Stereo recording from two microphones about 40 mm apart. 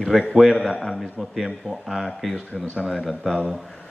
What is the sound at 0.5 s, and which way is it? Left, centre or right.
Speech, centre.